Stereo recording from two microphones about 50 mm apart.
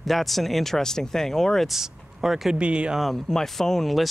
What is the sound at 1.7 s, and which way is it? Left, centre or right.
Speech, centre.